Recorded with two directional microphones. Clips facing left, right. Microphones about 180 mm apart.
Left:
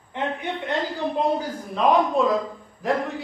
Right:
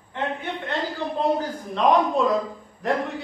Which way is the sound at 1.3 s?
5° left (ahead or behind).